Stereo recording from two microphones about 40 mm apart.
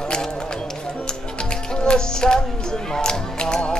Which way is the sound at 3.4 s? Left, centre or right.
Left.